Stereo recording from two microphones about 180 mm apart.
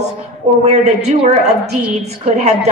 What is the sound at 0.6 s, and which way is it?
A woman's voice, 40° right (ahead or behind).